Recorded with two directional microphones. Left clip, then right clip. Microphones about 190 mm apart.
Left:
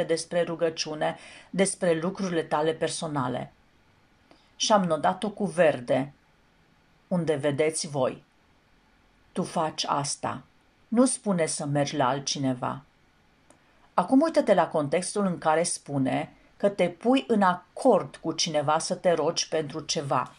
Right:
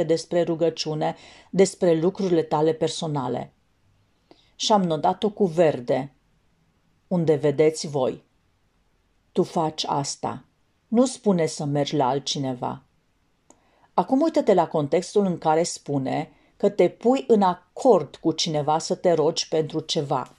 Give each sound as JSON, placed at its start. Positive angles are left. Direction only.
{"t": 0.0, "sound": "speech", "side_deg": -25}
{"t": 4.3, "sound": "a sound", "side_deg": -25}
{"t": 5.2, "sound": "speech", "side_deg": -20}
{"t": 7.1, "sound": "speech", "side_deg": -25}
{"t": 9.3, "sound": "speech", "side_deg": -25}
{"t": 14.1, "sound": "speech", "side_deg": -20}